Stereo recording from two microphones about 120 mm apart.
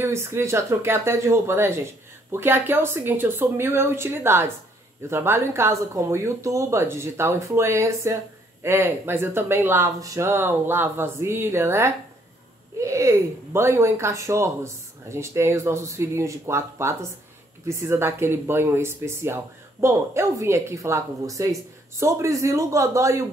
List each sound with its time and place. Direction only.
0.0 s speech: 20° right (ahead or behind)